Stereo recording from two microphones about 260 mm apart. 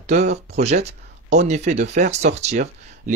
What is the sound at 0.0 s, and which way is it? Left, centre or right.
Speech, right.